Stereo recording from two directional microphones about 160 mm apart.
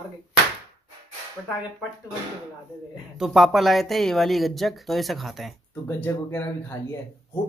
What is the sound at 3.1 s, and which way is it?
Speech, centre (ahead or behind).